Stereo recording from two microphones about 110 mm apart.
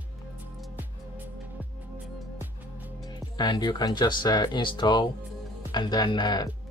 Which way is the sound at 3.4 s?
40° left (ahead or behind).